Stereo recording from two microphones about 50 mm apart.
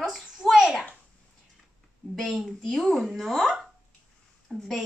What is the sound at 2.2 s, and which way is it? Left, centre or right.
A child's voice, centre.